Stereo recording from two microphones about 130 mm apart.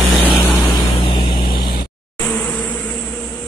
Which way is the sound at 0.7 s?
40° left (ahead or behind).